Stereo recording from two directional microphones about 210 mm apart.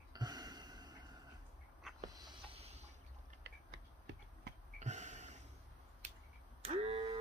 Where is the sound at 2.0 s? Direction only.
20° right (ahead or behind).